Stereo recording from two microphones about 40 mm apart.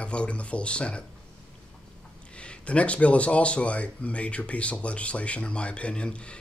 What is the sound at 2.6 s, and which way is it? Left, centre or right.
Speech, left.